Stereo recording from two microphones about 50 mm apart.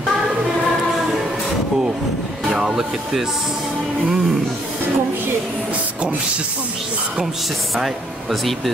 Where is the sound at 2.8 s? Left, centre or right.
Centre.